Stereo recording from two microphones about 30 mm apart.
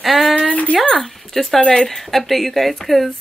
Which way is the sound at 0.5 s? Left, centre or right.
Left.